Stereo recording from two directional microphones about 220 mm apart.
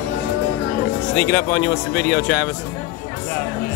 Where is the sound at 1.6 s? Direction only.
45° left (ahead or behind).